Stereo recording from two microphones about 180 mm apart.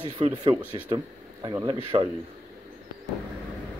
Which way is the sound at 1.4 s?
25° right (ahead or behind).